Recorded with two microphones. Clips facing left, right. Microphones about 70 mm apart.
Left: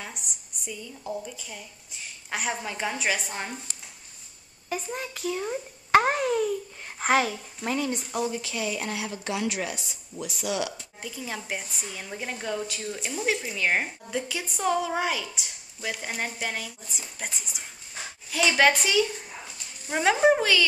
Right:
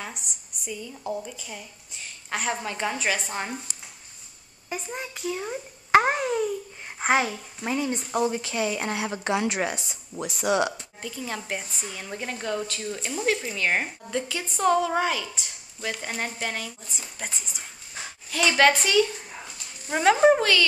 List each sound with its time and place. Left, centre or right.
0.0 s a woman's voice: centre
4.6 s a child's voice: centre
7.9 s a woman's voice: right
11.0 s a woman's voice: centre